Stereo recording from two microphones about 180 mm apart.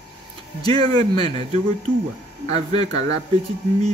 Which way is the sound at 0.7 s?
20° left (ahead or behind).